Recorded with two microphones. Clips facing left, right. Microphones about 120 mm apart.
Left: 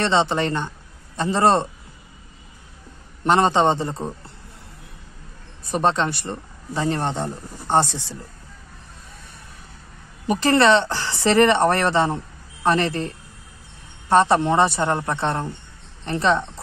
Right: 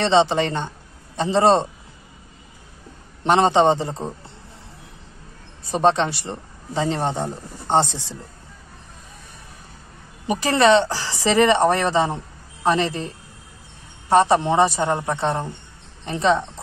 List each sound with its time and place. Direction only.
0.1 s a man's voice: 20° right (ahead or behind)
3.3 s a man's voice: 20° right (ahead or behind)
5.7 s a man's voice: 20° right (ahead or behind)
10.2 s a man's voice: 15° right (ahead or behind)